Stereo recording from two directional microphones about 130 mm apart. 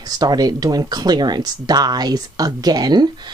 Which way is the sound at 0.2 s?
30° right (ahead or behind).